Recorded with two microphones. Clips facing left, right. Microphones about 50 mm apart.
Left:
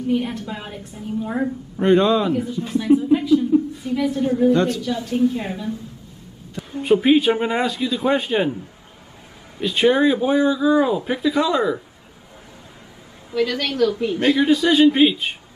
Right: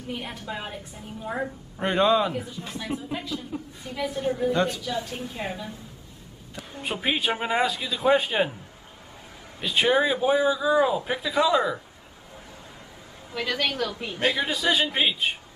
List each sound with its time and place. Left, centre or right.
0.1 s a woman's voice: centre
6.8 s a woman's voice: centre
9.6 s a woman's voice: centre
13.3 s a woman's voice: centre